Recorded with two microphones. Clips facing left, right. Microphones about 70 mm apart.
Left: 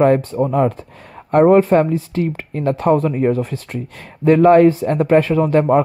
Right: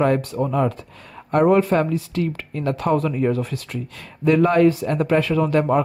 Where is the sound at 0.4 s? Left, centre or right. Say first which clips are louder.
Left 5 dB; left.